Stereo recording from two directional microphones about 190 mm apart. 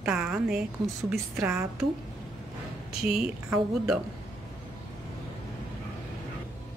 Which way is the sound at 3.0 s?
5° right (ahead or behind).